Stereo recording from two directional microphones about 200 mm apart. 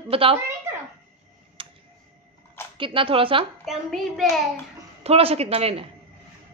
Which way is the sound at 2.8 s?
25° right (ahead or behind).